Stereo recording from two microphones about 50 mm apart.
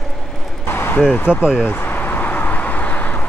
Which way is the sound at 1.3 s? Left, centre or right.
Right.